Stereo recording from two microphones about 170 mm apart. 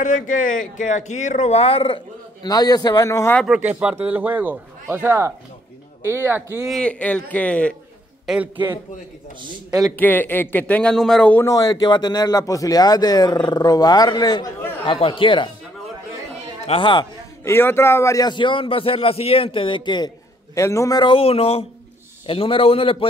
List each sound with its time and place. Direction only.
0.0 s speech: 50° left (ahead or behind); by 2.0 s 35° left (ahead or behind)
2.4 s a man's voice: 20° left (ahead or behind)
3.4 s a man's voice: 5° right (ahead or behind)
6.7 s a man's voice: 5° left (ahead or behind)
8.3 s a man's voice: 10° right (ahead or behind)
9.9 s a man's voice: 10° left (ahead or behind); by 15.5 s 30° left (ahead or behind)
16.6 s a man's voice: 30° left (ahead or behind)
17.5 s a man's voice: 15° left (ahead or behind); by 23.0 s 35° left (ahead or behind)